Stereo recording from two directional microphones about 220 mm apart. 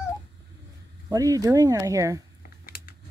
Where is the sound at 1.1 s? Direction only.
15° right (ahead or behind).